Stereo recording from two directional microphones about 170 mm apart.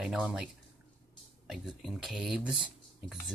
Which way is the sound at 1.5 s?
Centre (ahead or behind).